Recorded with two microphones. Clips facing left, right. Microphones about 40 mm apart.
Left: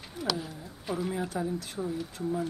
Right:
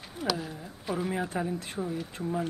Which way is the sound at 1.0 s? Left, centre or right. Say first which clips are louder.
Right 1 dB; right.